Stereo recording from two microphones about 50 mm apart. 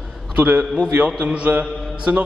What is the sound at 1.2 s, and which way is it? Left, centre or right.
Speech, right.